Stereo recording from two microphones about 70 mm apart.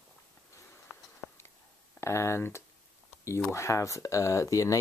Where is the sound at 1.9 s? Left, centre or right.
Left.